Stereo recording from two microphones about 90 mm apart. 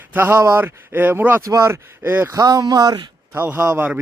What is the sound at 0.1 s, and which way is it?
Speech, 25° right (ahead or behind).